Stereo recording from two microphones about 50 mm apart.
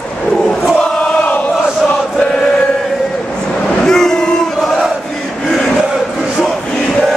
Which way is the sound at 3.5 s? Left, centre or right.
Centre.